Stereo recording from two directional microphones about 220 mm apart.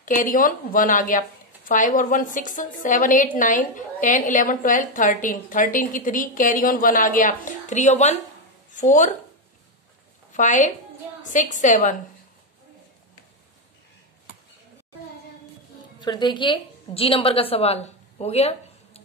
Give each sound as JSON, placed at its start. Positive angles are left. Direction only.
{"t": 0.0, "sound": "a woman's voice", "side_deg": 35}
{"t": 10.3, "sound": "a woman's voice", "side_deg": 35}
{"t": 16.0, "sound": "a woman's voice", "side_deg": 20}